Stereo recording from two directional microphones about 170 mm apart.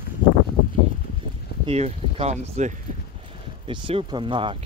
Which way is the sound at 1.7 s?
40° right (ahead or behind).